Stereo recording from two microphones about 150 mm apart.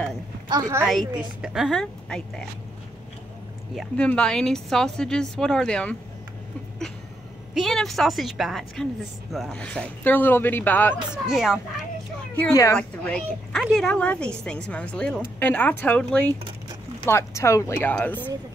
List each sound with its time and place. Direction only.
0.5 s a woman's voice: 25° right (ahead or behind)
1.1 s speech: 5° right (ahead or behind)
3.9 s speech: 10° left (ahead or behind)
7.5 s speech: centre (ahead or behind)
11.2 s speech: 5° right (ahead or behind)
12.7 s speech: 5° left (ahead or behind)
17.0 s speech: 20° left (ahead or behind)